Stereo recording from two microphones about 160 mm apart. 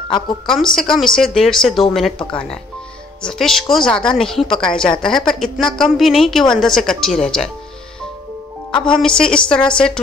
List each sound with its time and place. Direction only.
0.5 s a woman's voice: centre (ahead or behind)
8.7 s speech: 30° left (ahead or behind)
9.0 s a woman's voice: 5° left (ahead or behind)